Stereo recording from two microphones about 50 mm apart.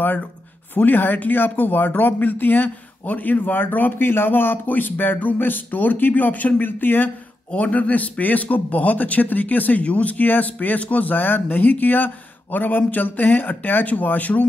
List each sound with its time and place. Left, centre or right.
0.7 s a man's voice: left
7.5 s a man's voice: left